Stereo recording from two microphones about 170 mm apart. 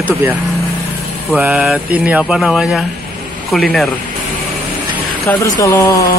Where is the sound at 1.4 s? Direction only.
5° right (ahead or behind).